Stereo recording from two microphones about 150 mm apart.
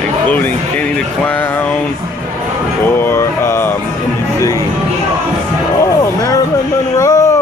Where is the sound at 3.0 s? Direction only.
15° left (ahead or behind).